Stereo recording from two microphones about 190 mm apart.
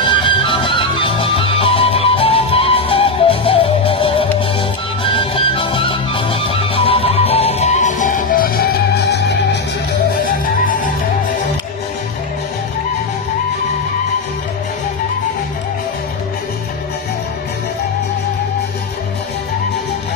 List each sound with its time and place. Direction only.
0.0 s music: 25° left (ahead or behind); by 8.6 s 50° left (ahead or behind)
9.1 s music: 60° left (ahead or behind)
10.4 s music: 45° left (ahead or behind)